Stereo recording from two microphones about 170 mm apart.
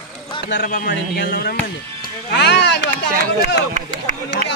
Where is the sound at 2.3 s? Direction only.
90° left.